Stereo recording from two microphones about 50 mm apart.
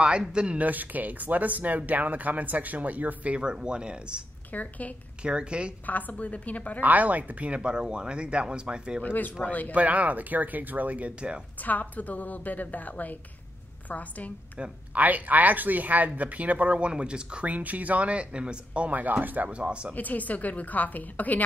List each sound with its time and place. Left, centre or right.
0.3 s speech: centre
0.6 s speech: right
3.3 s speech: centre
4.5 s a woman's voice: left
5.2 s speech: right
5.9 s a woman's voice: left
6.8 s speech: right
9.0 s a woman's voice: left
9.8 s speech: right
11.6 s a woman's voice: left
15.0 s speech: right
19.6 s speech: right
19.9 s a woman's voice: left